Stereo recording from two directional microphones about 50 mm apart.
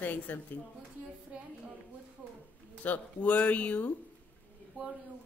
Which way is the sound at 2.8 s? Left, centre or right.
Left.